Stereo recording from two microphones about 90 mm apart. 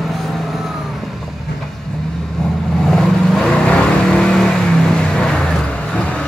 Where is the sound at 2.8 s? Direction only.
5° left (ahead or behind).